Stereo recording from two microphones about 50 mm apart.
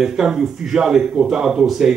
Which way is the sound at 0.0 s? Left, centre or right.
Centre.